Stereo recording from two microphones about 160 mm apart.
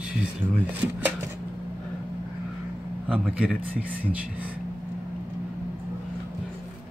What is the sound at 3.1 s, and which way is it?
Speech, 5° right (ahead or behind).